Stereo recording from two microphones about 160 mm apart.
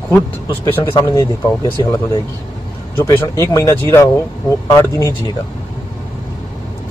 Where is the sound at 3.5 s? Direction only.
20° left (ahead or behind).